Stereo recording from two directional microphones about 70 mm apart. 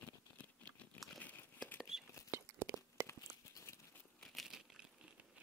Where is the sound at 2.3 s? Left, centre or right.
Right.